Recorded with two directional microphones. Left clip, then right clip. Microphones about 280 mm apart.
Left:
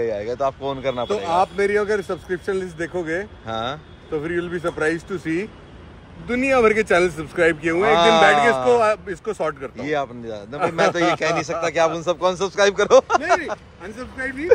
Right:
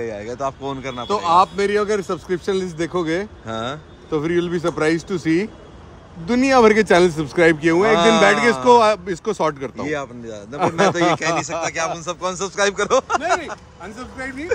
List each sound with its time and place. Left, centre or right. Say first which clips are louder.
0.0 s speech: left 3 dB; centre
1.7 s a man's voice: right 1 dB; right
3.4 s speech: even; centre
4.1 s a man's voice: right 4 dB; right
7.9 s speech: left 2 dB; centre
8.8 s a man's voice: right 3 dB; right
9.8 s speech: left 4 dB; centre